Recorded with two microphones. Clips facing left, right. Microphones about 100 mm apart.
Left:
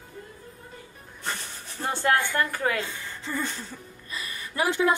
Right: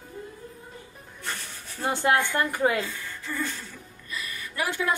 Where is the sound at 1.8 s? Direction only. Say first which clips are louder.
Right 1 dB; 20° right (ahead or behind).